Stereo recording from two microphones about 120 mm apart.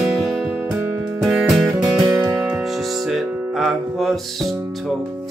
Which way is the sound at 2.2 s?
20° right (ahead or behind).